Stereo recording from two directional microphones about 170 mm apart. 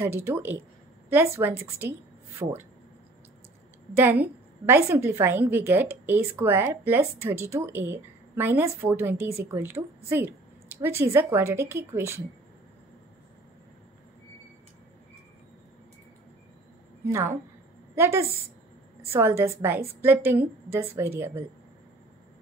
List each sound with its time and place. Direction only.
0.0 s a woman's voice: 15° right (ahead or behind)
4.0 s a woman's voice: 10° right (ahead or behind)
17.1 s a woman's voice: 15° right (ahead or behind)